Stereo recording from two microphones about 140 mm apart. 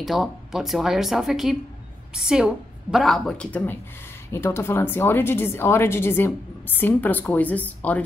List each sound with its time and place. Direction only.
0.0 s a woman's voice: centre (ahead or behind)